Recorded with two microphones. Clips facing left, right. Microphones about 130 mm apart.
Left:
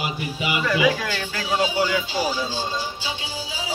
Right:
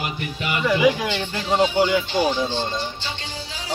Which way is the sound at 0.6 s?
15° right (ahead or behind).